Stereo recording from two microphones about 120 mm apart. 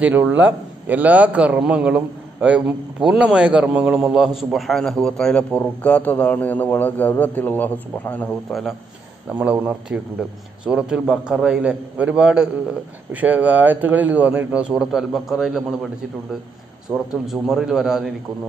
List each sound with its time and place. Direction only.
0.0 s a man's voice: 15° right (ahead or behind); by 8.3 s 15° left (ahead or behind)
8.5 s a man's voice: centre (ahead or behind)
9.3 s a man's voice: 15° right (ahead or behind)
16.9 s a man's voice: 5° right (ahead or behind)